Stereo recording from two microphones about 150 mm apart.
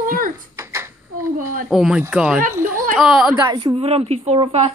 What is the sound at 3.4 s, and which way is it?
Speech, 30° right (ahead or behind).